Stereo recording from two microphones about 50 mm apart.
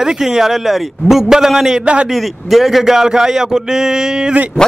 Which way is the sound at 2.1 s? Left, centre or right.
Centre.